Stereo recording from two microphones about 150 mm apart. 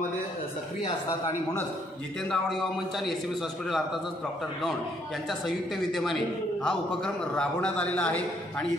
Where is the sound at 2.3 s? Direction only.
Centre (ahead or behind).